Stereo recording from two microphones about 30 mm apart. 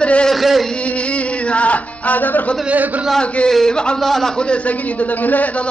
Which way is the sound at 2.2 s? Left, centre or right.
Left.